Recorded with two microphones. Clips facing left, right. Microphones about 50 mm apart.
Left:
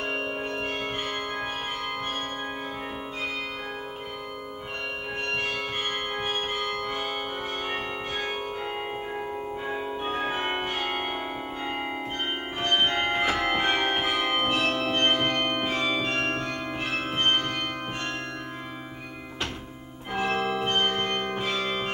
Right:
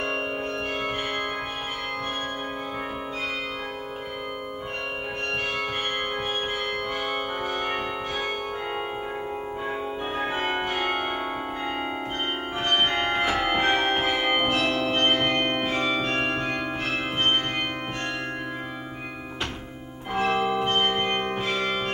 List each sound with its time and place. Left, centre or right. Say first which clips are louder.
6.6 s change ringing: right 1 dB; centre
10.7 s change ringing: right 3 dB; centre
12.9 s music: right 1 dB; centre
13.5 s music: right 2 dB; centre
13.9 s change ringing: right 2 dB; centre
14.7 s music: right 2 dB; centre
15.2 s organ: right 2 dB; centre
15.7 s music: right 2 dB; centre
20.1 s change ringing: right 3 dB; centre; by 21.4 s right